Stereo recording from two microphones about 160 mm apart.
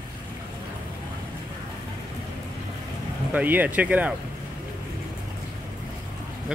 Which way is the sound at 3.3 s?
10° right (ahead or behind).